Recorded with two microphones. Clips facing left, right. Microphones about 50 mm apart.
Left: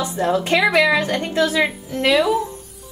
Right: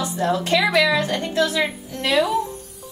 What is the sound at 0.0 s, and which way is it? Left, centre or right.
A woman's voice, left.